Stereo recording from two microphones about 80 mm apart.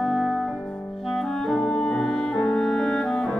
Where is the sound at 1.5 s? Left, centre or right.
Centre.